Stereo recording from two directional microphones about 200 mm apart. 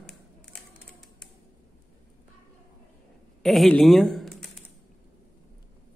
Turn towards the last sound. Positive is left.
turn(degrees=0)  # may be behind; listen again after turning